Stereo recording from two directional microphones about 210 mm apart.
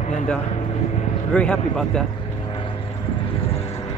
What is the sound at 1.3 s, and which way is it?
Speech, 5° left (ahead or behind).